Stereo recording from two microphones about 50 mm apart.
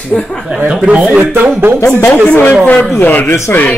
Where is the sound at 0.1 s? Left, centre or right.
Centre.